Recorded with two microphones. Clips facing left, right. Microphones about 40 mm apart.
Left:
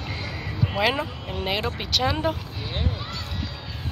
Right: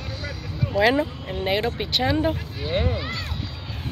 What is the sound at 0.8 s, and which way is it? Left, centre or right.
Speech, left.